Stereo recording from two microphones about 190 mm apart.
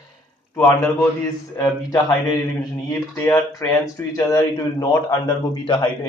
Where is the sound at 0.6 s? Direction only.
15° left (ahead or behind).